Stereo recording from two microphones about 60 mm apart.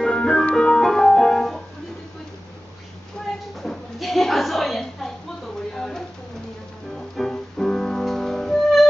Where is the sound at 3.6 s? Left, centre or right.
Centre.